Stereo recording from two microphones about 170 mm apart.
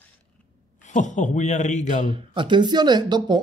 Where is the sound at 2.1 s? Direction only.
30° right (ahead or behind).